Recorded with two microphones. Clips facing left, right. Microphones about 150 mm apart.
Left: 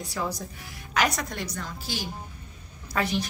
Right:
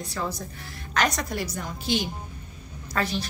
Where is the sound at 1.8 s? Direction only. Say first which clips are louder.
Right 10 dB; 20° right (ahead or behind).